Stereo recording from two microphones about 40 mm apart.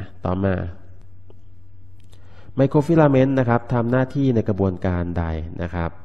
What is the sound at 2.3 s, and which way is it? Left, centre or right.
A man's voice, centre.